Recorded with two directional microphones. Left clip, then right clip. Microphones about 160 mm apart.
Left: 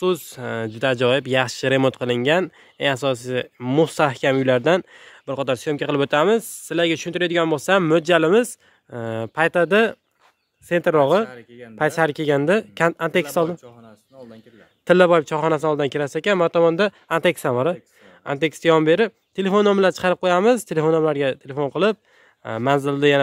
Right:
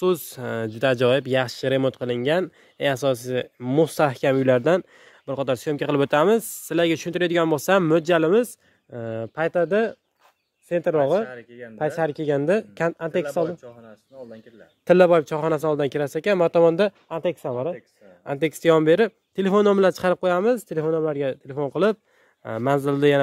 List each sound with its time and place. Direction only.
0.0 s speech: centre (ahead or behind); by 11.2 s 30° left (ahead or behind)
11.2 s speech: 90° left
11.8 s speech: 25° left (ahead or behind)
12.9 s speech: 30° left (ahead or behind)
13.5 s speech: 75° left (ahead or behind)
14.9 s speech: 10° left (ahead or behind)
17.1 s speech: 40° left (ahead or behind)
18.2 s speech: 5° left (ahead or behind)
20.5 s speech: 25° left (ahead or behind); by 23.1 s centre (ahead or behind)